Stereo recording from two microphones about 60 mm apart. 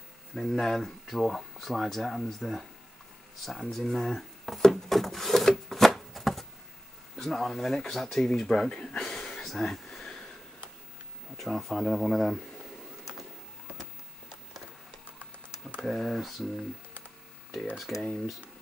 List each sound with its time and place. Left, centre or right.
0.3 s speech: centre
3.4 s wood: centre
7.2 s speech: centre
11.3 s speech: centre
15.8 s speech: centre
17.9 s speech: left